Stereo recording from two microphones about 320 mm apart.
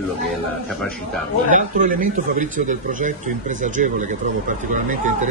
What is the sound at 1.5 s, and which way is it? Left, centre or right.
Speech, right.